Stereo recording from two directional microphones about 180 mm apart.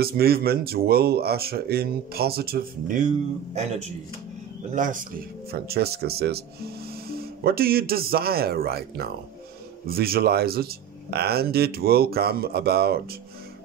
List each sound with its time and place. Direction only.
0.0 s speech: 60° right (ahead or behind)
4.7 s speech: 45° right (ahead or behind)